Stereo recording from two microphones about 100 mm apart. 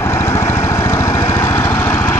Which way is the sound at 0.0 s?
30° left (ahead or behind).